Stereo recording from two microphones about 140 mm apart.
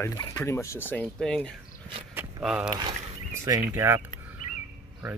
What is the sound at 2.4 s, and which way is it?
Speech, 5° right (ahead or behind).